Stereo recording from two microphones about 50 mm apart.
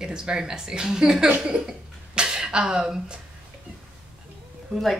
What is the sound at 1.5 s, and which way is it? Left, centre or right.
Cough, centre.